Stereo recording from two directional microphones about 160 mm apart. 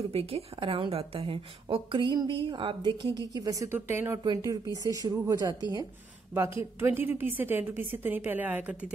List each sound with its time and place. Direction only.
0.1 s a woman's voice: 35° right (ahead or behind); by 4.2 s 15° right (ahead or behind)
4.2 s a woman's voice: 25° right (ahead or behind)